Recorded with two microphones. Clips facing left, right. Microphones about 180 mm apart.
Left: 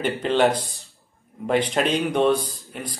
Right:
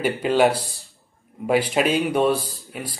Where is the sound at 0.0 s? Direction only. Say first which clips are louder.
Right 1 dB; 10° right (ahead or behind).